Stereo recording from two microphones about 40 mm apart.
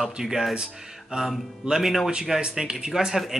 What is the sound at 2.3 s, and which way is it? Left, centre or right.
Speech, centre.